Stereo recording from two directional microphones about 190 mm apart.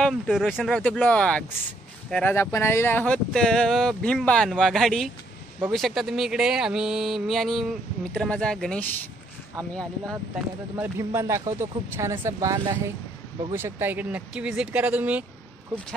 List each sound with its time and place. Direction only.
0.0 s speech: centre (ahead or behind)
10.8 s speech: 15° right (ahead or behind)